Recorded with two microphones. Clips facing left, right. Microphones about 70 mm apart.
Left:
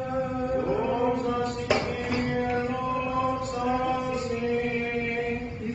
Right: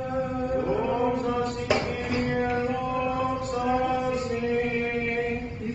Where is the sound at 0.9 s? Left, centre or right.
Right.